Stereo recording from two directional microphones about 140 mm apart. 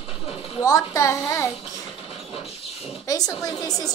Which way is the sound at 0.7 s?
25° left (ahead or behind).